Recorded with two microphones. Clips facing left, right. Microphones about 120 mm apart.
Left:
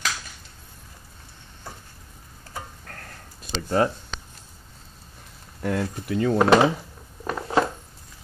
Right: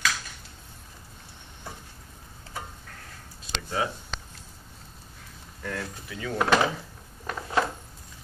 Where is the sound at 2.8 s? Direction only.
55° left (ahead or behind).